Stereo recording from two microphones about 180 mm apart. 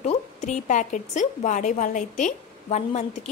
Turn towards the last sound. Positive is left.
turn(degrees=40)  # may be behind; listen again after turning